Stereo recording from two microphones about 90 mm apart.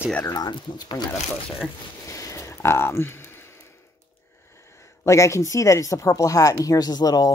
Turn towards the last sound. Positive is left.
turn(degrees=45)  # may be behind; listen again after turning